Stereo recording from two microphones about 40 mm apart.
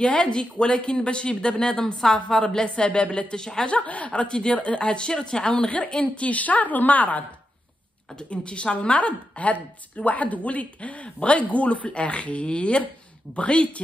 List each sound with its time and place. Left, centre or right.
0.0 s a woman's voice: left
3.6 s a woman's voice: left
4.1 s a woman's voice: left
8.2 s a woman's voice: left